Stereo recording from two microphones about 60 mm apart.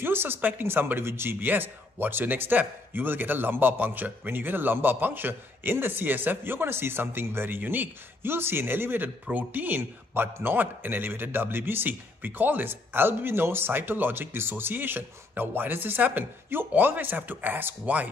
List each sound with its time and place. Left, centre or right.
0.0 s speech: right